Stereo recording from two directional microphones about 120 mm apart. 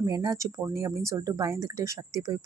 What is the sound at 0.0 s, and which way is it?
A woman's voice, 30° right (ahead or behind).